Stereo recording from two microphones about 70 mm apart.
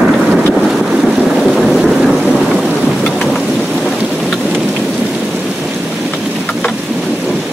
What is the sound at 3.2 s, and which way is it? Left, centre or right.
Thunder, centre.